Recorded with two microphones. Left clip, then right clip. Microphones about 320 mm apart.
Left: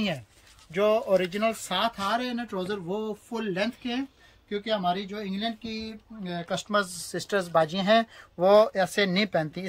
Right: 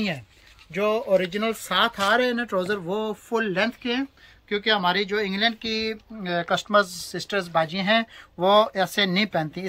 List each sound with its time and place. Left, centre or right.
0.7 s speech: centre
2.0 s speech: centre
7.2 s speech: left